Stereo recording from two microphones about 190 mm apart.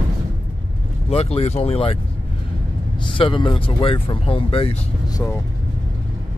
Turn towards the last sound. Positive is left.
turn(degrees=30)  # may be behind; listen again after turning